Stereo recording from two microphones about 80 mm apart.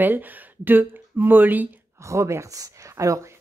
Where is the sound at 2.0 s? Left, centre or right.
Right.